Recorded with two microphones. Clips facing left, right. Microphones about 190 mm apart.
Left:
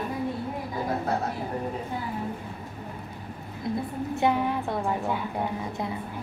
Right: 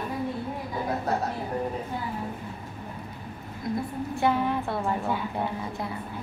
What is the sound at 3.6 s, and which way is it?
A woman's voice, 25° left (ahead or behind).